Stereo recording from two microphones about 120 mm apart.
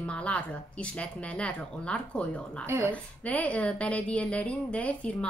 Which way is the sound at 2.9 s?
10° left (ahead or behind).